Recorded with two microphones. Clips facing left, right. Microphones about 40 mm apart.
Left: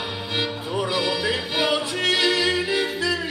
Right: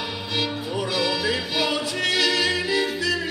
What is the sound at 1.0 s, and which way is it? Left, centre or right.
Music, left.